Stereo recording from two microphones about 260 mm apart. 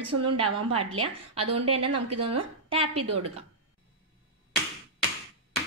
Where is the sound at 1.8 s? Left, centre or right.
Right.